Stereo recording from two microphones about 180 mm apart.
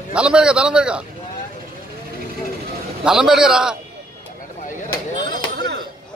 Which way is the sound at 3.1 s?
5° right (ahead or behind).